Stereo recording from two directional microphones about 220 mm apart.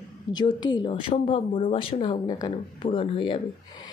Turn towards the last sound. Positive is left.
turn(degrees=20)  # may be behind; listen again after turning